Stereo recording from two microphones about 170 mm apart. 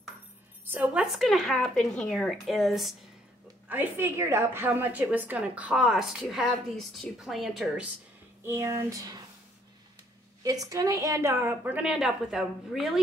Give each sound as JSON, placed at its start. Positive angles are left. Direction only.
{"t": 0.7, "sound": "speech", "side_deg": -10}
{"t": 3.6, "sound": "a woman's voice", "side_deg": -10}
{"t": 8.5, "sound": "speech", "side_deg": -15}
{"t": 10.4, "sound": "a woman's voice", "side_deg": -20}